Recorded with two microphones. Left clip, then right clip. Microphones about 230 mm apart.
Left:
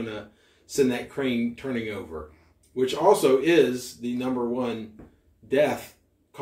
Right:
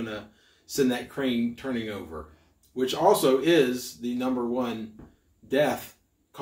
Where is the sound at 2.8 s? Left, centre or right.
Right.